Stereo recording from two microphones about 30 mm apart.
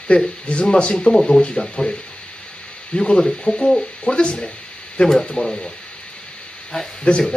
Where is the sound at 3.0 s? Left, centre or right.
Left.